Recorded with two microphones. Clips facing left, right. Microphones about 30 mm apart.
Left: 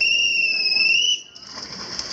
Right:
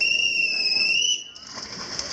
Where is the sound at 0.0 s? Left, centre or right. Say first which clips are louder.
Left 3 dB; left.